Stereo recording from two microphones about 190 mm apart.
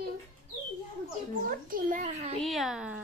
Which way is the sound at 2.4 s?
Centre (ahead or behind).